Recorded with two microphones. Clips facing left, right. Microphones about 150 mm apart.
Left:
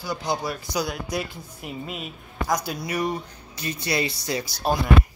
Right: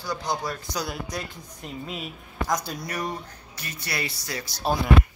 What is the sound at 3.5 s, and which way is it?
Speech, 20° left (ahead or behind).